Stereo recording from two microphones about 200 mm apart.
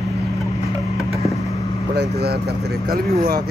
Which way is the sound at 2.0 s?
55° right (ahead or behind).